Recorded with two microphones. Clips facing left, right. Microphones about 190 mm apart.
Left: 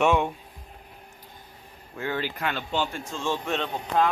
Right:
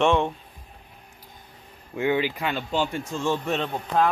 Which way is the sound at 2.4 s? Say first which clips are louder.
Right 2 dB; centre (ahead or behind).